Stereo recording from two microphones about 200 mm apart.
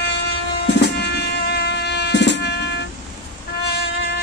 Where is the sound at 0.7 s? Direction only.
55° left (ahead or behind).